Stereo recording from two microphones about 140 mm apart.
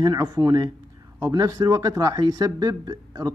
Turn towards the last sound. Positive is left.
turn(degrees=-25)  # may be behind; listen again after turning